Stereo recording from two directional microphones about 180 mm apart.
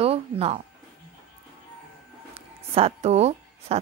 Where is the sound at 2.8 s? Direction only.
35° right (ahead or behind).